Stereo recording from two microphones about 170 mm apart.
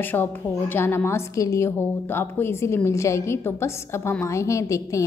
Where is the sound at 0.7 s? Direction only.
15° left (ahead or behind).